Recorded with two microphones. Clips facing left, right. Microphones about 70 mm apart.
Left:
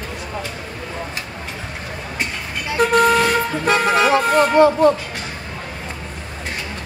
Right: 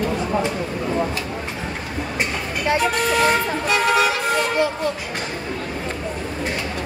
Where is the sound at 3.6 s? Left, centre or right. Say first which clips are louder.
Left 3 dB; left.